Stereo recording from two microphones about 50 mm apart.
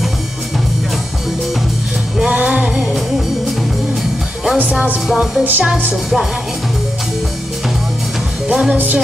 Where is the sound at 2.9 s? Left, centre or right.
Centre.